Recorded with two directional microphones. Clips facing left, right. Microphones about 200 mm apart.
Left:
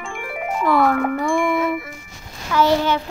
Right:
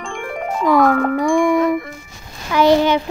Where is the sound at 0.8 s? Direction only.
10° left (ahead or behind).